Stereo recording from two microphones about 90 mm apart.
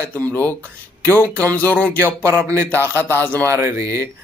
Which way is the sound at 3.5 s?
30° right (ahead or behind).